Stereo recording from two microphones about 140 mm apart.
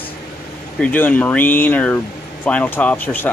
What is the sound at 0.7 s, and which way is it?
Speech, 10° left (ahead or behind).